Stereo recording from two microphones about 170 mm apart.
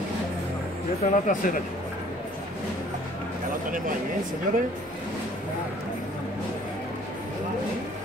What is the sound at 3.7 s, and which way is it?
Speech, 55° right (ahead or behind).